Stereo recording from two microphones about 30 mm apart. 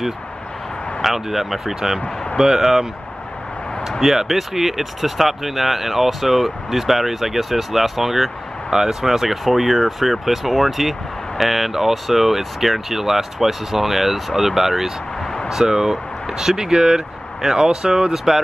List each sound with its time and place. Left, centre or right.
1.0 s speech: centre
4.0 s speech: centre
8.6 s speech: centre
15.4 s speech: centre
16.5 s speech: right
18.1 s speech: centre